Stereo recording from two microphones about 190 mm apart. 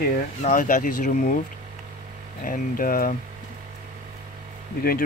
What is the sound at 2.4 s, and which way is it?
Speech, 45° left (ahead or behind).